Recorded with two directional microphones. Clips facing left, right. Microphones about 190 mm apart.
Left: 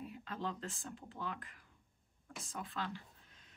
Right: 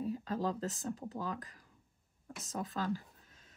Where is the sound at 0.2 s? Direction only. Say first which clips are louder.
Right 7 dB; 40° right (ahead or behind).